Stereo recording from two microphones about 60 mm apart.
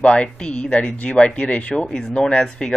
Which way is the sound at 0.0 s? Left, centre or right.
Centre.